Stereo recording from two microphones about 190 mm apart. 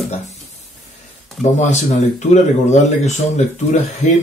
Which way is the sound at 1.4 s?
40° left (ahead or behind).